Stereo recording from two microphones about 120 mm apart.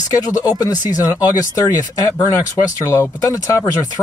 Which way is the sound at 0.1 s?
30° left (ahead or behind).